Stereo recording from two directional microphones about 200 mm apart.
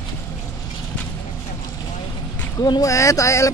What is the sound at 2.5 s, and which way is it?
Speech, 20° left (ahead or behind).